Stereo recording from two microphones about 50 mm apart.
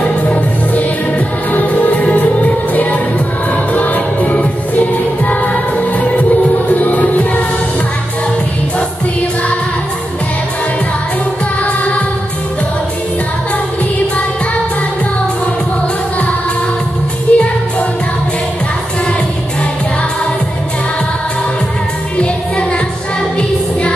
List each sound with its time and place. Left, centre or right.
0.0 s music: left
11.6 s music: left
17.3 s music: left